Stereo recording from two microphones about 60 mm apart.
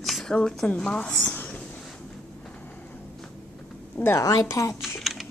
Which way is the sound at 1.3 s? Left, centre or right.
Left.